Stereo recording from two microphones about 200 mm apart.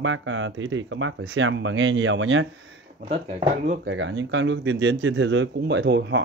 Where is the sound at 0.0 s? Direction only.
70° right (ahead or behind).